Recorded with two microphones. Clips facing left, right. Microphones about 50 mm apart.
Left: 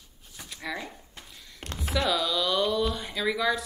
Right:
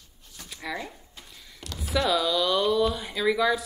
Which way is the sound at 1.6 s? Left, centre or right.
Left.